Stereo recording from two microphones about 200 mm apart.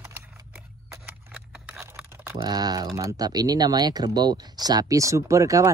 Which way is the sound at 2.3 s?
20° right (ahead or behind).